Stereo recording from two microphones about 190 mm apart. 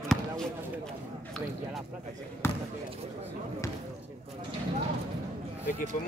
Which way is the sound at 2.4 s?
10° left (ahead or behind).